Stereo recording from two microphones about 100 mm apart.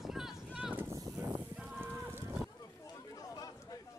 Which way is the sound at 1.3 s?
15° right (ahead or behind).